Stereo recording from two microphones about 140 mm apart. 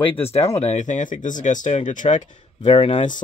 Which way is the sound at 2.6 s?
40° left (ahead or behind).